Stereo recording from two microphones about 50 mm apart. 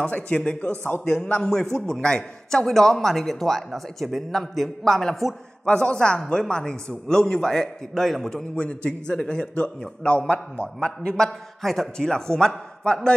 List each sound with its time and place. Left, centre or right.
0.0 s a man's voice: left; by 5.3 s centre
5.7 s a man's voice: centre
8.5 s a man's voice: left
11.6 s a man's voice: centre